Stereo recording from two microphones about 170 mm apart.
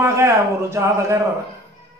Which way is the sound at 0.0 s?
15° right (ahead or behind).